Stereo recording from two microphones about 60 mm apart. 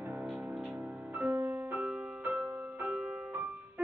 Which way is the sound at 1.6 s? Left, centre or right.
Right.